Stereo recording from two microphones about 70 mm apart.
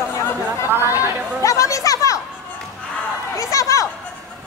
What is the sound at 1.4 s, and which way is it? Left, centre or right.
Chatter, left.